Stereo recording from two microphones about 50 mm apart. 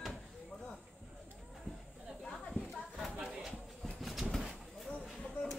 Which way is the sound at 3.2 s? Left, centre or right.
Centre.